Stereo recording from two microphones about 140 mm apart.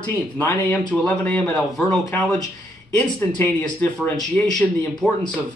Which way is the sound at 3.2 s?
15° left (ahead or behind).